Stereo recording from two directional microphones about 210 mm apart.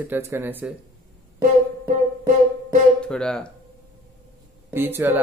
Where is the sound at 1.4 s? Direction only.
40° right (ahead or behind).